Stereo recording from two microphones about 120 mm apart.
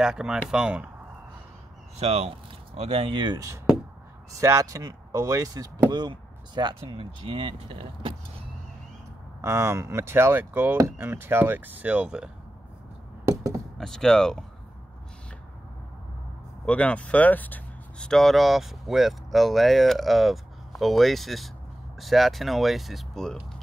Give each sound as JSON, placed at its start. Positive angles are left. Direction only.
{"t": 0.0, "sound": "speech", "side_deg": -5}
{"t": 2.0, "sound": "speech", "side_deg": -60}
{"t": 4.3, "sound": "speech", "side_deg": -25}
{"t": 9.4, "sound": "speech", "side_deg": -25}
{"t": 13.2, "sound": "a sound", "side_deg": -25}
{"t": 13.7, "sound": "speech", "side_deg": 5}
{"t": 16.6, "sound": "speech", "side_deg": 10}